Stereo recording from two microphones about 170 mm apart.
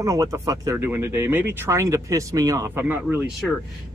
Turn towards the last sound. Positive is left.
turn(degrees=-10)  # may be behind; listen again after turning